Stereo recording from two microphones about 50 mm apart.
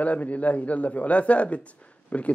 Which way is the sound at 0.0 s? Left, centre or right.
Left.